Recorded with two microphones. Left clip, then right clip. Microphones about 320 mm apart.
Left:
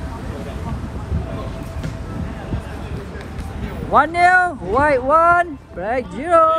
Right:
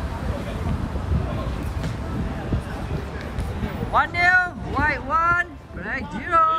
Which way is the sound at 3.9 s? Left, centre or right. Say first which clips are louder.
Left 5 dB; centre.